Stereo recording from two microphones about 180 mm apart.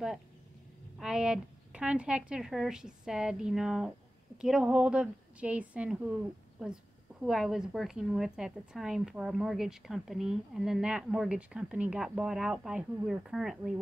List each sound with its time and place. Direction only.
0.9 s a woman's voice: 5° right (ahead or behind)